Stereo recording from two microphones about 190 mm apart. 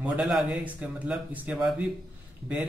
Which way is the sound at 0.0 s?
5° right (ahead or behind).